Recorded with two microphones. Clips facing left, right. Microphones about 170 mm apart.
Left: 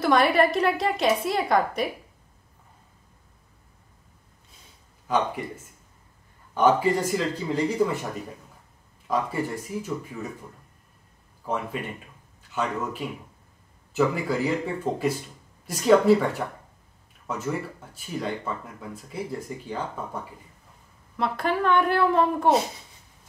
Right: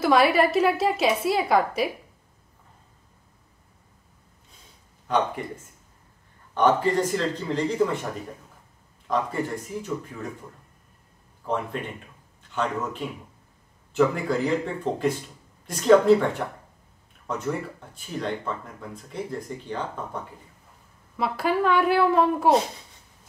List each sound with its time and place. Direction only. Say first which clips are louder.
0.0 s a woman's voice: right 1 dB; 5° right (ahead or behind)
5.0 s speech: right 1 dB; 5° left (ahead or behind)
6.5 s speech: even; 10° left (ahead or behind)
11.7 s speech: even; 5° left (ahead or behind)
13.9 s speech: right 2 dB; 5° left (ahead or behind)
21.2 s a woman's voice: right 1 dB; 5° right (ahead or behind)